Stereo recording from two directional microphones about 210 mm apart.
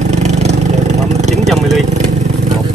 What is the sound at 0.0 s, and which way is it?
Vehicle, 30° right (ahead or behind).